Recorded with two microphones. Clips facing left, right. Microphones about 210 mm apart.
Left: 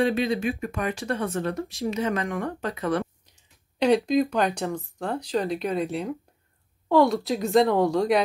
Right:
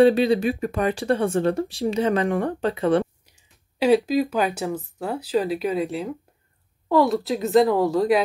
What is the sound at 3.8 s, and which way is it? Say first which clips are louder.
Speech: right 2 dB; 5° right (ahead or behind).